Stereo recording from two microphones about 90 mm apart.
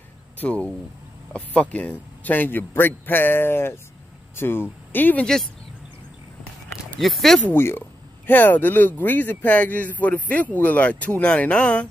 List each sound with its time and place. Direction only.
0.4 s a man's voice: 15° left (ahead or behind)
5.2 s speech: 5° left (ahead or behind)
7.0 s speech: centre (ahead or behind)
7.4 s a man's voice: 25° left (ahead or behind)